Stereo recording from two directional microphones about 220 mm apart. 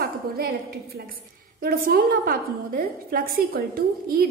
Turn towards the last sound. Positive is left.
turn(degrees=-40)  # may be behind; listen again after turning